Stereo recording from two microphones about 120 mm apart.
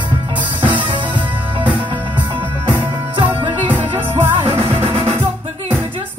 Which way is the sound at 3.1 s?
40° right (ahead or behind).